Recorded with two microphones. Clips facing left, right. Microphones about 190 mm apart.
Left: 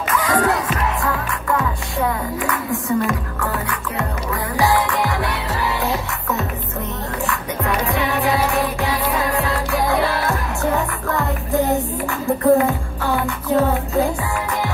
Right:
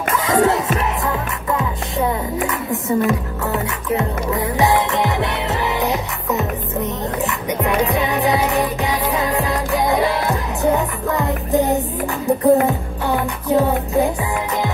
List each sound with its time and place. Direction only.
0.1 s music: 25° right (ahead or behind)